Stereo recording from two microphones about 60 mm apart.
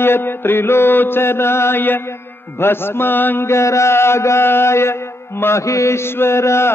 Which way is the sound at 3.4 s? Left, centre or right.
Left.